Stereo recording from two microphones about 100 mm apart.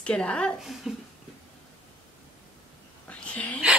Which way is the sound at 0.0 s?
10° left (ahead or behind).